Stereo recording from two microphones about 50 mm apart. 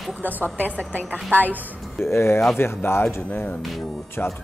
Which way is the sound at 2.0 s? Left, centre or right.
Left.